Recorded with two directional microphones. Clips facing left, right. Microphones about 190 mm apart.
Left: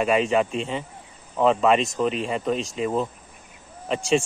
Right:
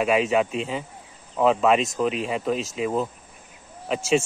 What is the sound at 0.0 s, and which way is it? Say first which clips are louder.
Cricket: even; centre (ahead or behind).